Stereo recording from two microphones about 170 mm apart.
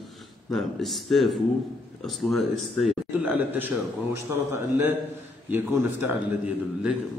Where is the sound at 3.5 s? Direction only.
15° right (ahead or behind).